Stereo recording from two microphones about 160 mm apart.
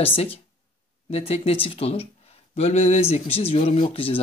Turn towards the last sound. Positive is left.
turn(degrees=35)  # may be behind; listen again after turning